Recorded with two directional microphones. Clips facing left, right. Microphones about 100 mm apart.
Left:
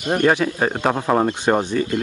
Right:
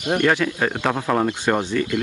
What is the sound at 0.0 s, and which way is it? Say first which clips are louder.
Speech: left 2 dB; 35° left (ahead or behind).